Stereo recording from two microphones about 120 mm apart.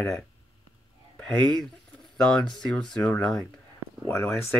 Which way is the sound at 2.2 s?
5° left (ahead or behind).